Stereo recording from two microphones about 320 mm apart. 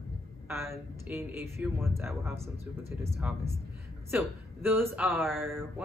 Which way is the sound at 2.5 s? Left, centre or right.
Centre.